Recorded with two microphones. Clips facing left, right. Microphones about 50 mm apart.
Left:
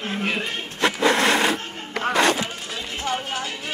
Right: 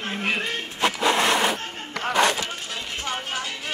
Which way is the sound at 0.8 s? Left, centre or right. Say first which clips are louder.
Left 2 dB; left.